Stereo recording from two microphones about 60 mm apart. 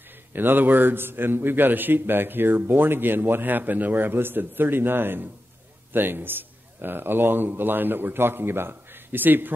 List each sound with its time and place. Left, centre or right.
0.3 s a man's voice: right